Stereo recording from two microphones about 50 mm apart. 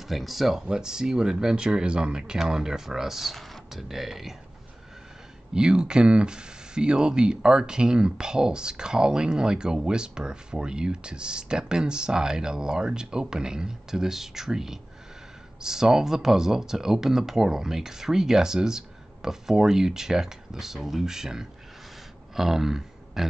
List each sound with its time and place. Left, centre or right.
0.0 s speech: centre
5.5 s speech: centre
22.3 s a sound: centre